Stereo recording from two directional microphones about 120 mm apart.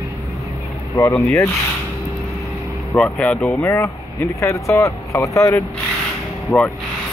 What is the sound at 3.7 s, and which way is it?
Speech, 25° left (ahead or behind).